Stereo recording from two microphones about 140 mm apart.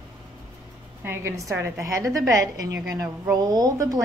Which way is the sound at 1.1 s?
20° right (ahead or behind).